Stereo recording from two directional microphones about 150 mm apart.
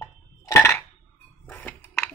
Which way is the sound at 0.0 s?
20° left (ahead or behind).